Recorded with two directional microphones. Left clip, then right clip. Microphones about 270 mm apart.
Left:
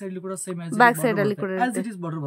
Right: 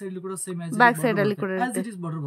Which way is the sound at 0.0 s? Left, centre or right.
Centre.